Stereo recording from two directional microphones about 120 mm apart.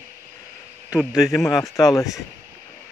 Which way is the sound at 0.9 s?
5° right (ahead or behind).